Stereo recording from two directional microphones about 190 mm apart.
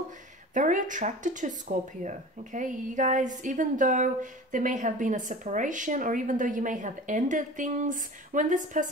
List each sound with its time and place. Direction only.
0.6 s speech: 40° right (ahead or behind)